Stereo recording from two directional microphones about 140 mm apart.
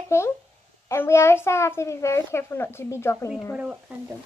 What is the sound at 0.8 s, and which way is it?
A child's voice, 20° left (ahead or behind).